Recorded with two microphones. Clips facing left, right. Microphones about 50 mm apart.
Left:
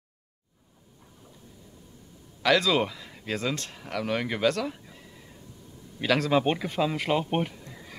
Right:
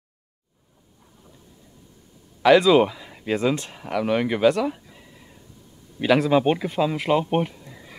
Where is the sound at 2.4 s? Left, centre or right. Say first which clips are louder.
Right 8 dB; centre.